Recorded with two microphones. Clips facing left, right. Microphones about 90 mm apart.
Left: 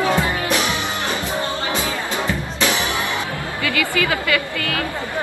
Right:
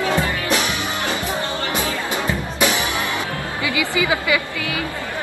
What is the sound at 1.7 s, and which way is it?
Music, 15° right (ahead or behind).